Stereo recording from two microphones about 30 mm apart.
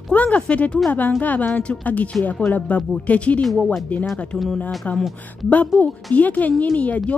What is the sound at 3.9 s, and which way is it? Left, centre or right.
Speech, left.